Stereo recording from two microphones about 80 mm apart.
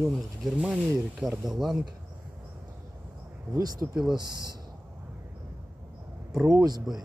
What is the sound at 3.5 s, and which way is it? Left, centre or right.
Speech, right.